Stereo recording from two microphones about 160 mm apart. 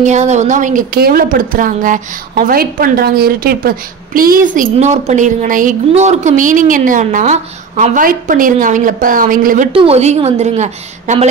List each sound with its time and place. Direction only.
0.0 s a woman's voice: 45° right (ahead or behind)
9.7 s a woman's voice: 35° right (ahead or behind)